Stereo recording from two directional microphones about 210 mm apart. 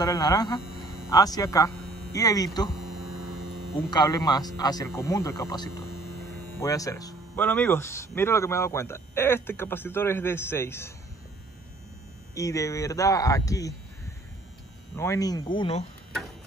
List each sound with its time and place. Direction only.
0.0 s speech: 20° left (ahead or behind)
3.9 s speech: 20° left (ahead or behind)
12.4 s speech: 15° left (ahead or behind)
15.0 s speech: 15° left (ahead or behind)